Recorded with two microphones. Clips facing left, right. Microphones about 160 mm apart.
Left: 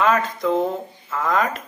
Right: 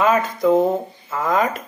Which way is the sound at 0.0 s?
5° right (ahead or behind).